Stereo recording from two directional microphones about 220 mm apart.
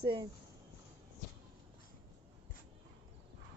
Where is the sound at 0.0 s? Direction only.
15° right (ahead or behind).